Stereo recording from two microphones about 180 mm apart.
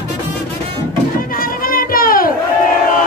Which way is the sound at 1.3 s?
55° left (ahead or behind).